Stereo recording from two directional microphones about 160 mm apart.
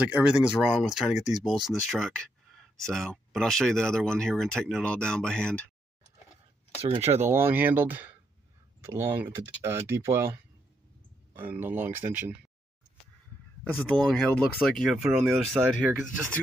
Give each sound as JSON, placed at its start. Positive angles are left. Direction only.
{"t": 0.1, "sound": "speech", "side_deg": -5}
{"t": 6.8, "sound": "speech", "side_deg": -40}
{"t": 7.2, "sound": "speech", "side_deg": -15}
{"t": 11.3, "sound": "speech", "side_deg": -10}
{"t": 14.0, "sound": "speech", "side_deg": 5}